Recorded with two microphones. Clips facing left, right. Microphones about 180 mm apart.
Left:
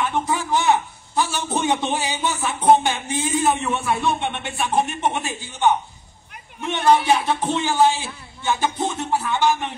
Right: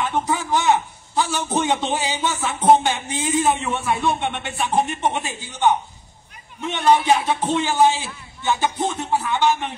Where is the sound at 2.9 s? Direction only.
15° right (ahead or behind).